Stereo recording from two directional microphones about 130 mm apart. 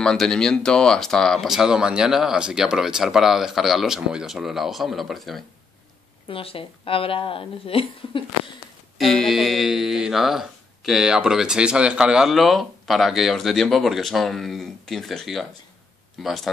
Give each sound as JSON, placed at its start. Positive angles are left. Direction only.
{"t": 0.0, "sound": "speech", "side_deg": 5}
{"t": 6.2, "sound": "speech", "side_deg": 45}
{"t": 8.9, "sound": "speech", "side_deg": 0}